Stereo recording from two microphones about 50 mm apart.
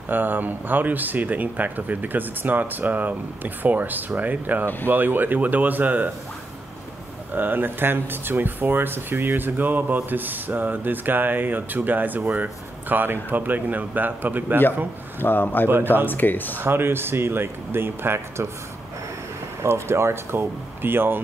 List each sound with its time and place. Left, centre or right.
0.1 s speech: right
7.3 s speech: right
15.1 s speech: left
16.5 s speech: right
19.7 s speech: right